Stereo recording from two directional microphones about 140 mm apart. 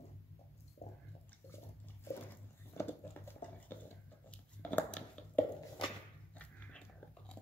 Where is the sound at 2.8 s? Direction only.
15° left (ahead or behind).